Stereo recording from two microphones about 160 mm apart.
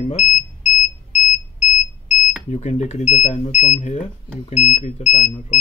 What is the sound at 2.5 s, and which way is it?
Speech, 45° left (ahead or behind).